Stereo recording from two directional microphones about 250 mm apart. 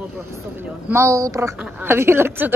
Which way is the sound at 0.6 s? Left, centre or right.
Centre.